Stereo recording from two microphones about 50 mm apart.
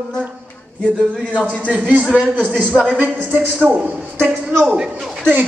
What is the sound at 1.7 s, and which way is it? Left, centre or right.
Speech, right.